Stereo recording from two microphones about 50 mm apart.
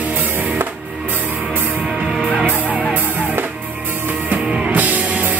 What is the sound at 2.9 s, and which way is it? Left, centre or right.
Music, right.